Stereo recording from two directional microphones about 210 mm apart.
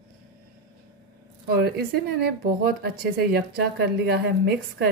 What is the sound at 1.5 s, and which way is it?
Speech, 50° right (ahead or behind).